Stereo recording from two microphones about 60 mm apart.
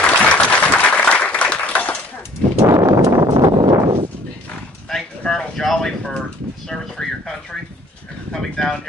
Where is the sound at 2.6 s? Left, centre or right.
Right.